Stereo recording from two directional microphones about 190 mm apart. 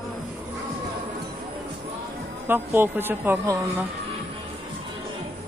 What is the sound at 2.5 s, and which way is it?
Speech, 10° right (ahead or behind).